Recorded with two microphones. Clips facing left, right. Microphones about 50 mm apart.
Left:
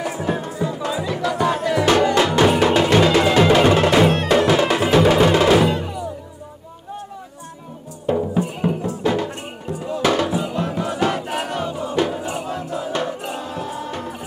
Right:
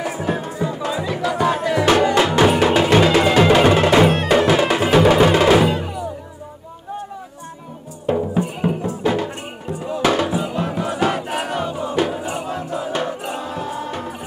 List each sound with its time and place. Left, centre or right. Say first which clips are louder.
0.0 s music: right 1 dB; centre
1.0 s a sound: right 1 dB; centre
1.7 s music: even; right
8.1 s music: even; centre